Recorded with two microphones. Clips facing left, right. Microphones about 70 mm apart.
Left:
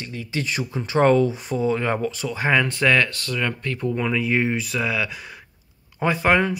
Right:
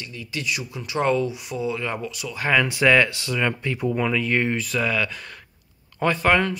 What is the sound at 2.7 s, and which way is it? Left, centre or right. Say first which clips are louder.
Speech: right 2 dB; centre.